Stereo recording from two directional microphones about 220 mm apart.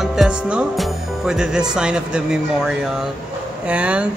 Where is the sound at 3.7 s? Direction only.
5° right (ahead or behind).